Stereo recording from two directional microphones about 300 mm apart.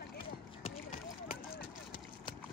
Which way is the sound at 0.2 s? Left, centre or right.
Centre.